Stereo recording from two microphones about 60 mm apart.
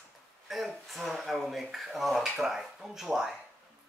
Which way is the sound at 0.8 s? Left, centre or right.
Centre.